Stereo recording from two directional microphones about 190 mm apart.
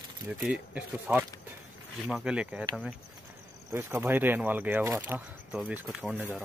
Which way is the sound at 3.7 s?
10° right (ahead or behind).